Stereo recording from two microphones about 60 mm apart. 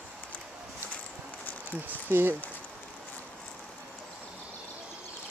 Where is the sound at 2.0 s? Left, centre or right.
Right.